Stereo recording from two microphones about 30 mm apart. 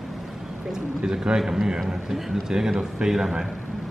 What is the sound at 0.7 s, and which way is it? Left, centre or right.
A man's voice, centre.